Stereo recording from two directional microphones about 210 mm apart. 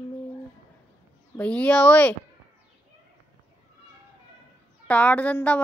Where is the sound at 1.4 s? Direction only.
5° left (ahead or behind).